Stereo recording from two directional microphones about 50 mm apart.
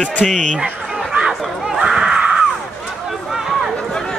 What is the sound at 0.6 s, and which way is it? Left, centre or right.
Chatter, right.